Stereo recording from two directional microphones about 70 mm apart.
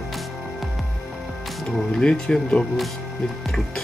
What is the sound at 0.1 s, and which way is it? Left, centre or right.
Music, centre.